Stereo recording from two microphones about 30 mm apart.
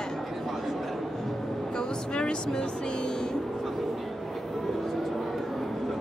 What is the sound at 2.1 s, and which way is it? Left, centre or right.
Music, left.